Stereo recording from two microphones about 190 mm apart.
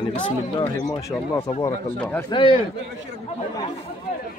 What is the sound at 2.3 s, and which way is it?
Speech, 25° left (ahead or behind).